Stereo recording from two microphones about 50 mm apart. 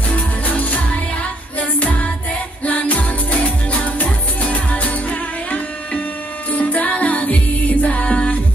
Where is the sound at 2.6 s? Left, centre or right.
Left.